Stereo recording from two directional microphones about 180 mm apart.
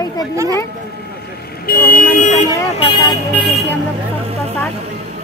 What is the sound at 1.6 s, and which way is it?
Speech, 55° left (ahead or behind).